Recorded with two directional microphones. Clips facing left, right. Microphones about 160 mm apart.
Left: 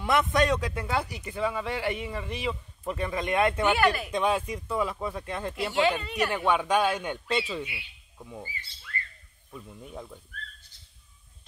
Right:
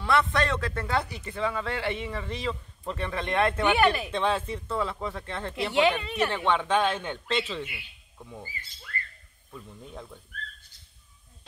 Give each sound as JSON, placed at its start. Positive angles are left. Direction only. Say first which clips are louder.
{"t": 0.0, "sound": "speech", "louder": "left 1 dB", "side_deg": 20}
{"t": 3.8, "sound": "speech", "louder": "right 1 dB", "side_deg": -25}
{"t": 4.1, "sound": "speech", "louder": "left 1 dB", "side_deg": 10}
{"t": 5.8, "sound": "speech", "louder": "right 2 dB", "side_deg": -20}
{"t": 6.2, "sound": "speech", "louder": "left 1 dB", "side_deg": 10}
{"t": 8.5, "sound": "speech", "louder": "even", "side_deg": -45}
{"t": 9.5, "sound": "speech", "louder": "left 1 dB", "side_deg": 10}